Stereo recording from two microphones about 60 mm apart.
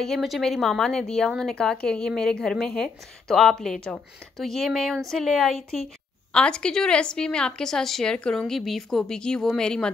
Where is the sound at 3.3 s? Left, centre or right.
Centre.